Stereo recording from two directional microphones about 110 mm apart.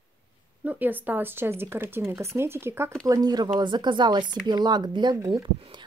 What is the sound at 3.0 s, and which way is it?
Speech, 35° right (ahead or behind).